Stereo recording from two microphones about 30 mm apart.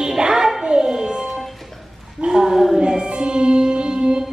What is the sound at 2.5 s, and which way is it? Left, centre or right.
Speech, centre.